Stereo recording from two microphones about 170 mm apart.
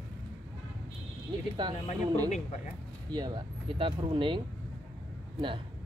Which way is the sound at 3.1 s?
25° right (ahead or behind).